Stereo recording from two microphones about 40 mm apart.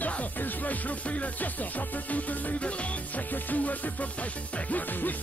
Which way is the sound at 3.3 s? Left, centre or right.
Left.